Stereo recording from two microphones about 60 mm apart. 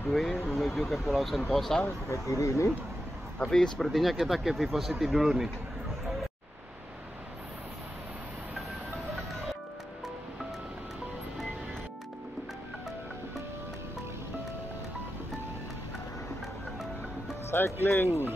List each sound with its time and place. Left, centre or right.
0.1 s speech: centre
2.0 s speech: left
3.4 s speech: centre
3.9 s speech: centre
17.5 s music: left
17.8 s speech: left